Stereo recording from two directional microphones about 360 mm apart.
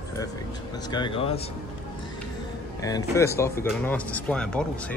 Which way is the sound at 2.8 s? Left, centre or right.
Centre.